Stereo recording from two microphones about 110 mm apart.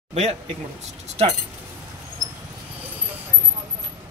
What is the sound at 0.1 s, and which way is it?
Speech, 90° right.